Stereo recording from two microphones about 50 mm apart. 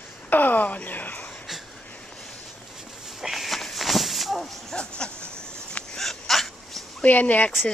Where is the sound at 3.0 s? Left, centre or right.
Centre.